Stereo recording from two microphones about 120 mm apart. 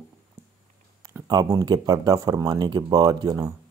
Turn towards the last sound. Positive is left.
turn(degrees=-35)  # may be behind; listen again after turning